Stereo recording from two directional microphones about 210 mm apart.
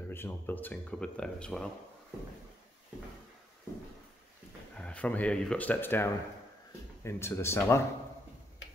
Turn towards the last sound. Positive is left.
turn(degrees=10)  # may be behind; listen again after turning